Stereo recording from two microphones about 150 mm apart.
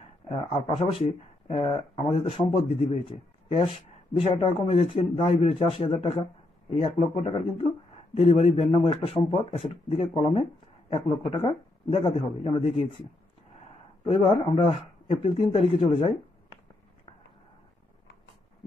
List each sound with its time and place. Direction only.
0.0 s speech: 40° left (ahead or behind)
14.0 s speech: 40° left (ahead or behind)